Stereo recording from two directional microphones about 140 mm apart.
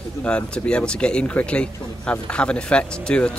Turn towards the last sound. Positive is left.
turn(degrees=5)  # may be behind; listen again after turning